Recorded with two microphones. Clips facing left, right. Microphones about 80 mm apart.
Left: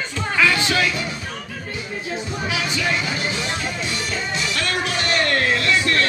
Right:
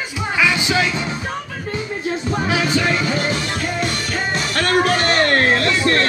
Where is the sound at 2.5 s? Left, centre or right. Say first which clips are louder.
Right 4 dB; right.